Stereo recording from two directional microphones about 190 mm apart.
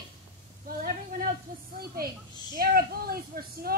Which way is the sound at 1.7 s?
55° right (ahead or behind).